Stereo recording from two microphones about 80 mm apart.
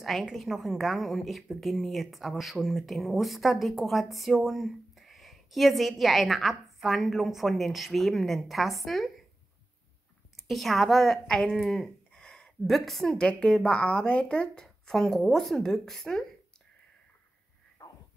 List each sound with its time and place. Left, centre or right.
0.0 s a woman's voice: centre
10.3 s a woman's voice: centre
17.8 s a sound: left